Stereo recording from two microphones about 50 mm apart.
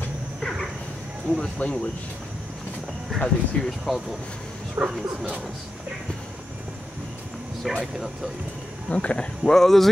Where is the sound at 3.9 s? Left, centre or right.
Centre.